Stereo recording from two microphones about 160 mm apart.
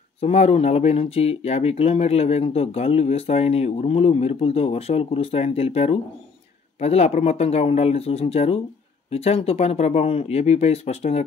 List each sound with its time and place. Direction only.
0.2 s speech: 40° left (ahead or behind)